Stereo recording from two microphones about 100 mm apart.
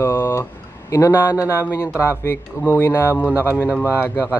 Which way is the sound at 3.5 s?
15° right (ahead or behind).